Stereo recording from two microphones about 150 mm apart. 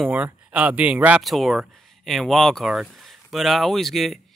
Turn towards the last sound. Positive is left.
turn(degrees=0)  # may be behind; listen again after turning